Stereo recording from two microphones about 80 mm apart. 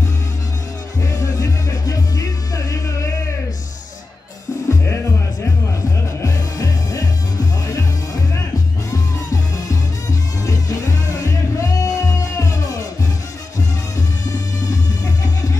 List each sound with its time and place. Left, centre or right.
1.0 s music: left
4.6 s music: left
10.4 s music: left